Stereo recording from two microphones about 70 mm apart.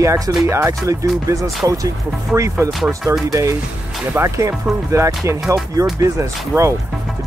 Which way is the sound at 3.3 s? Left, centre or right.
Right.